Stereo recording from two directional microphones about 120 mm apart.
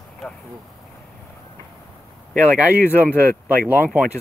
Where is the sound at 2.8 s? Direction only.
15° left (ahead or behind).